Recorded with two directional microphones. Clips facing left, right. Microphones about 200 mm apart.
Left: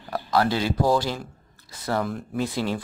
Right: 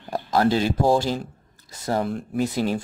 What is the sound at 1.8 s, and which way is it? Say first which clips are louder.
Speech: right 2 dB; 25° right (ahead or behind).